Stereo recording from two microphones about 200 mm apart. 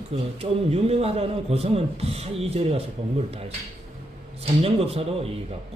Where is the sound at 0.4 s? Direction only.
30° right (ahead or behind).